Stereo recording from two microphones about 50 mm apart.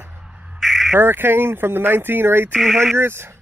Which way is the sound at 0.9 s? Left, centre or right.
Right.